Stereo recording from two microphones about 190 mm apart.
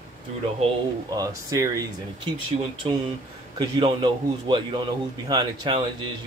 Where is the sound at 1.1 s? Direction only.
20° right (ahead or behind).